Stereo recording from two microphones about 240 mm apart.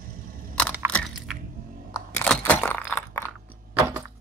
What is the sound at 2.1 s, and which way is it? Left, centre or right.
Crunch, centre.